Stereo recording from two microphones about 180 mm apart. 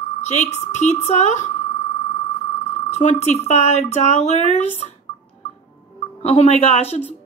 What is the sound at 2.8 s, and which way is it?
Speech, 40° left (ahead or behind).